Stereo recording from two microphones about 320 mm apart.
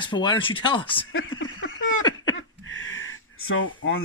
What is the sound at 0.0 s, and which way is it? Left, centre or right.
Speech, centre.